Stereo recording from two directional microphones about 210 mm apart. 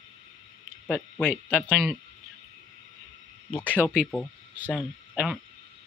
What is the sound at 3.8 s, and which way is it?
Speech, 5° right (ahead or behind).